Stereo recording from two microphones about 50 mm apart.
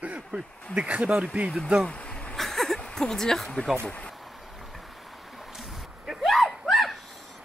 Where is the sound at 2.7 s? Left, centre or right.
Centre.